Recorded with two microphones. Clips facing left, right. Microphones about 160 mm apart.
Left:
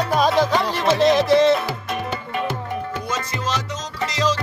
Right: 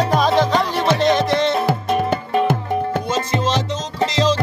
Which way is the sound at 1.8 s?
40° right (ahead or behind).